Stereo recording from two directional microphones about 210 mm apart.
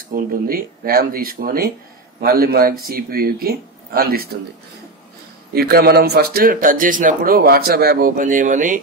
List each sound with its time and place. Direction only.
0.1 s speech: 45° right (ahead or behind)
5.5 s speech: 45° right (ahead or behind)